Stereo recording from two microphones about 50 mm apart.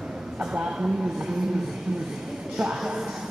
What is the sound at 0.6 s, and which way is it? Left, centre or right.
Speech, centre.